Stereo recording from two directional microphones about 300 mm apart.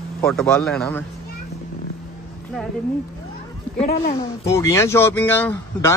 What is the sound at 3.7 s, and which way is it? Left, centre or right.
Speech, left.